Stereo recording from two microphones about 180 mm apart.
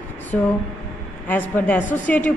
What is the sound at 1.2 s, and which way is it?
A woman's voice, 10° left (ahead or behind).